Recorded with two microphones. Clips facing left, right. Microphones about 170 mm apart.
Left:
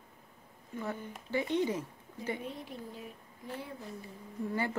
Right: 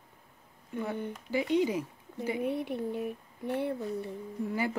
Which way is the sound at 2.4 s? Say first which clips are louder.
Right 10 dB; 65° right (ahead or behind).